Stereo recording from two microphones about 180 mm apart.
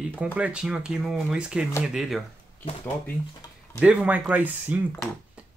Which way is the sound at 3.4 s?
20° left (ahead or behind).